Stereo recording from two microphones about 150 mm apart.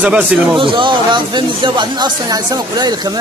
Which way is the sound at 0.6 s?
35° right (ahead or behind).